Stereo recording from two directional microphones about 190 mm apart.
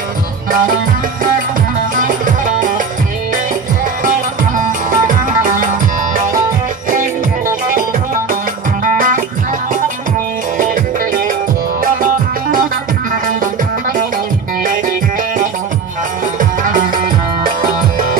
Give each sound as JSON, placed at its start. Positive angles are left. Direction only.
{"t": 2.0, "sound": "music", "side_deg": -45}
{"t": 4.0, "sound": "music", "side_deg": -45}
{"t": 7.6, "sound": "music", "side_deg": -45}
{"t": 10.6, "sound": "music", "side_deg": -45}
{"t": 16.3, "sound": "music", "side_deg": -45}